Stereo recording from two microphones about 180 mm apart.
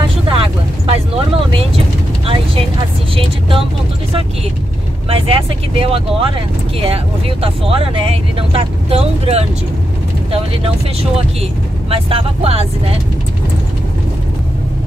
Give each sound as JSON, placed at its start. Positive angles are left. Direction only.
{"t": 0.3, "sound": "vehicle", "side_deg": -30}
{"t": 2.2, "sound": "vehicle", "side_deg": -30}
{"t": 5.1, "sound": "vehicle", "side_deg": -30}
{"t": 11.9, "sound": "speech", "side_deg": -30}